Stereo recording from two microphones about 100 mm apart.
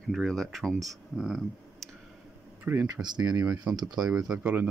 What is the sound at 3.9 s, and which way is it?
Speech, 5° right (ahead or behind).